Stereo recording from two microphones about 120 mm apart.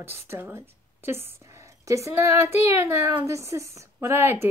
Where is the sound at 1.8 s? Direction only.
25° right (ahead or behind).